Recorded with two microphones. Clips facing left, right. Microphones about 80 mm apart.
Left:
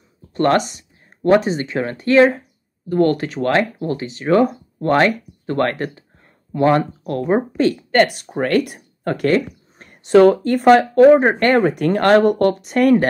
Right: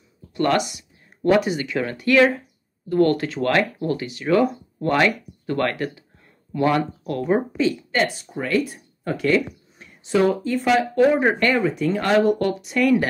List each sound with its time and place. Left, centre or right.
0.3 s speech: left
7.5 s speech: left
11.5 s speech: left